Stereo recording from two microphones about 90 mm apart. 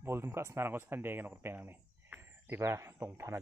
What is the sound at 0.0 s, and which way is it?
Speech, 30° right (ahead or behind).